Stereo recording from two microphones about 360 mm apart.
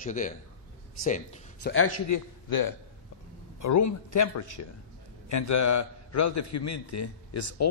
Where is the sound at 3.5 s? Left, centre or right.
Left.